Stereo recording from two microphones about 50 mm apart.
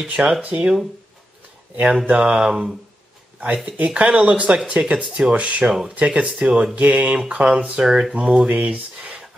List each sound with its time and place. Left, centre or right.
0.1 s speech: centre
0.4 s speech: right
2.0 s speech: right
3.8 s speech: right
5.6 s speech: centre
5.9 s speech: right
7.8 s speech: centre
8.1 s speech: right